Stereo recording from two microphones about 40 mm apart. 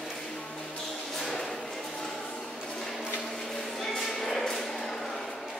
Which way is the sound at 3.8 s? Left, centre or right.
Centre.